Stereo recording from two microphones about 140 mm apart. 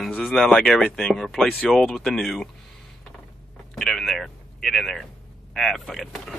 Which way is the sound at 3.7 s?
5° left (ahead or behind).